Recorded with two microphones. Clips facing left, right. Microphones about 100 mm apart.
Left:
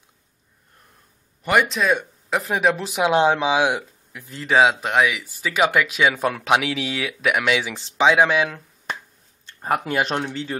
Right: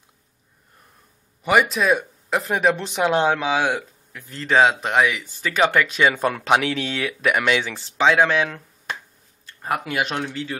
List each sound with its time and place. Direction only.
1.4 s speech: 5° right (ahead or behind)
7.7 s speech: 15° left (ahead or behind)
9.5 s speech: 30° left (ahead or behind)